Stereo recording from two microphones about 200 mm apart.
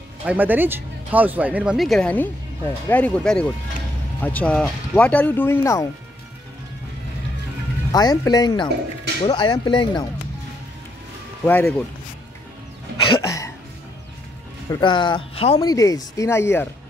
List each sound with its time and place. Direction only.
0.2 s speech: 5° right (ahead or behind); by 5.9 s 15° left (ahead or behind)
7.9 s speech: 20° left (ahead or behind)
11.4 s speech: 10° left (ahead or behind)
13.0 s throat clearing: 20° left (ahead or behind)
14.7 s speech: 25° left (ahead or behind)
15.6 s speech: 15° left (ahead or behind)